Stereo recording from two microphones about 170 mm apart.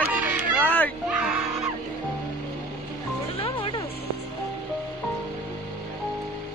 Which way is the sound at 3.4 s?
30° left (ahead or behind).